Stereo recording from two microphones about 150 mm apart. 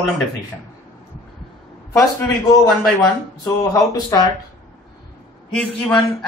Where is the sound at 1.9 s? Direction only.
20° left (ahead or behind).